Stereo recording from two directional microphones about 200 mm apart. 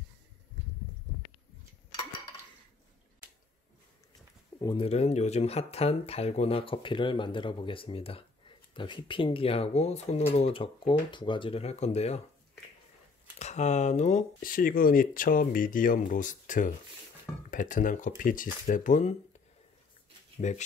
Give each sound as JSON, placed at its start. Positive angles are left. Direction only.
{"t": 4.6, "sound": "speech", "side_deg": 25}
{"t": 13.4, "sound": "speech", "side_deg": 35}
{"t": 20.3, "sound": "speech", "side_deg": 35}